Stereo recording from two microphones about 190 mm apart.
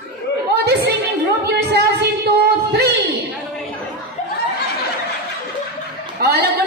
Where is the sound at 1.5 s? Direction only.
60° right (ahead or behind).